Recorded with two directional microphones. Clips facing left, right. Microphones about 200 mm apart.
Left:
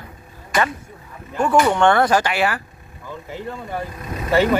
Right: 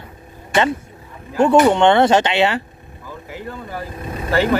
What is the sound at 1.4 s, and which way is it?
Speech, 20° right (ahead or behind).